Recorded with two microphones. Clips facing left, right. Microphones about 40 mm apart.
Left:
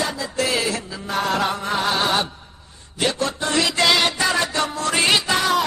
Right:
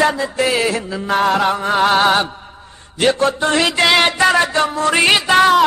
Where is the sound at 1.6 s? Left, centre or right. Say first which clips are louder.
Right 8 dB; right.